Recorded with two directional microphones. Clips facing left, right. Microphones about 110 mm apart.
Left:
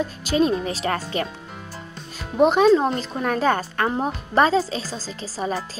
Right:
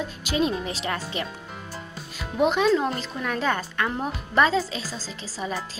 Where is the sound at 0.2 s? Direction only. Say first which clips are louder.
Left 4 dB; 40° left (ahead or behind).